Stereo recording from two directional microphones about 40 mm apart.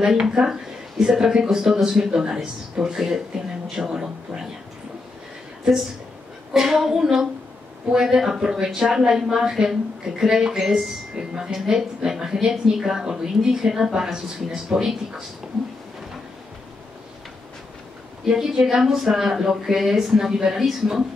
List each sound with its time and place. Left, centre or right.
0.2 s a woman's voice: centre
6.5 s a woman's voice: centre
18.2 s a woman's voice: centre